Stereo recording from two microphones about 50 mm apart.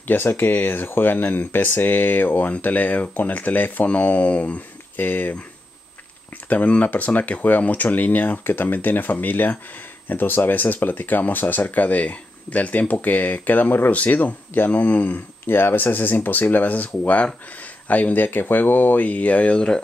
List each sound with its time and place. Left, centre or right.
0.0 s speech: left
6.5 s speech: left